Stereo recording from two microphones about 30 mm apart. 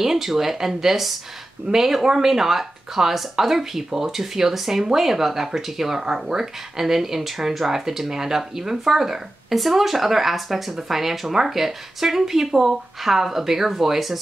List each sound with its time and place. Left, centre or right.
0.0 s speech: centre